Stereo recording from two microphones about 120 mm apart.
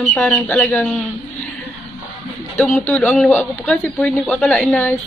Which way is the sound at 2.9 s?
15° left (ahead or behind).